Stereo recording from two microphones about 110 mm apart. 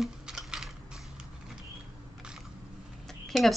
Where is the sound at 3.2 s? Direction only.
Centre (ahead or behind).